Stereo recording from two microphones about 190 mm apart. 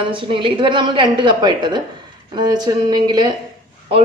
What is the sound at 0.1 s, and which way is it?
A woman's voice, 25° right (ahead or behind).